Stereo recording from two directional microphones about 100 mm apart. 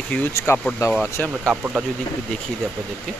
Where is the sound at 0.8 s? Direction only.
35° left (ahead or behind).